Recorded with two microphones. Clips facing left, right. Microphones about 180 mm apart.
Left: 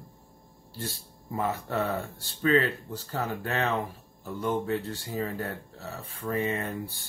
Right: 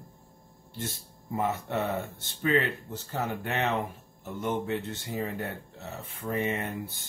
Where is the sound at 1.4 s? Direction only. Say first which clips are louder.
Even; 20° right (ahead or behind).